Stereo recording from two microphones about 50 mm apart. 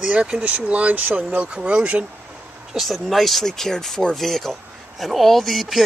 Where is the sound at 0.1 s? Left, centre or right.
Right.